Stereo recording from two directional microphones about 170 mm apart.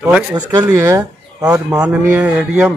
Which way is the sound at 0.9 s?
20° right (ahead or behind).